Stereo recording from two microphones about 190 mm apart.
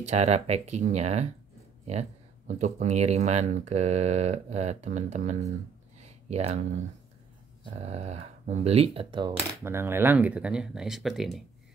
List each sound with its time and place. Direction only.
0.0 s speech: 35° right (ahead or behind)
5.9 s a sound: 35° right (ahead or behind)
7.7 s speech: 35° right (ahead or behind)
9.6 s speech: 15° right (ahead or behind)